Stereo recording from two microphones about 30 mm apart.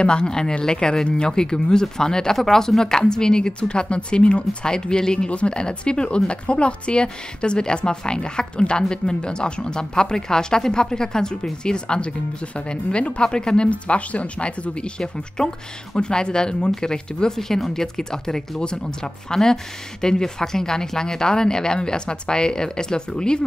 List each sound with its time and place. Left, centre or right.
0.0 s speech: left
4.6 s speech: left
5.3 s speech: left
5.6 s speech: left
13.7 s speech: left